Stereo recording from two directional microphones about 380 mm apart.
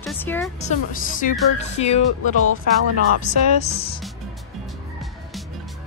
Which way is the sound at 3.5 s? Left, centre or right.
Centre.